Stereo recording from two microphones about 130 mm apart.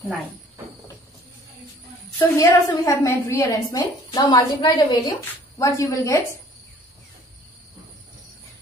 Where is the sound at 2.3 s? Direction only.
25° left (ahead or behind).